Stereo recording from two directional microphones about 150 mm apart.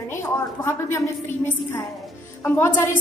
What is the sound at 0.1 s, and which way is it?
A woman's voice, 15° left (ahead or behind).